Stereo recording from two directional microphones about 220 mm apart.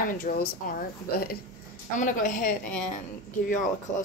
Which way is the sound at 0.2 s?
40° left (ahead or behind).